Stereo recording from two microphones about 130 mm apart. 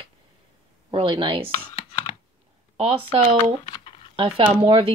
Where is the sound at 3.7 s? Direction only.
45° left (ahead or behind).